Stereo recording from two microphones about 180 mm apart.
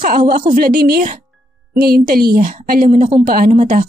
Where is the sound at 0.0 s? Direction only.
50° right (ahead or behind).